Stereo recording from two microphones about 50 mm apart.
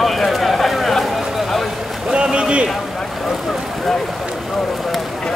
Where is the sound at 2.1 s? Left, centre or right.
Right.